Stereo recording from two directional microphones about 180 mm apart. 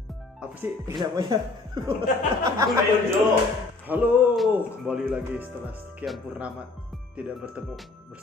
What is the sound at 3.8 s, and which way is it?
Speech, 10° right (ahead or behind).